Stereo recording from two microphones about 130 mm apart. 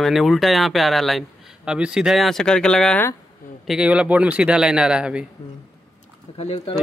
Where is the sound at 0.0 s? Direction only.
Centre (ahead or behind).